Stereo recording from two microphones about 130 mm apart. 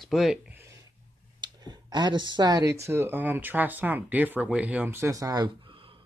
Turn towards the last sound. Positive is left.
turn(degrees=-30)  # may be behind; listen again after turning